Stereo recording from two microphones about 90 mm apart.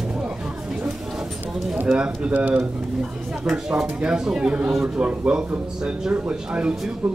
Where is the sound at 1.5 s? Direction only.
5° right (ahead or behind).